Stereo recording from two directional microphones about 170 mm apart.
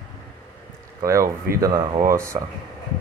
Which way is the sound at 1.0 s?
20° right (ahead or behind).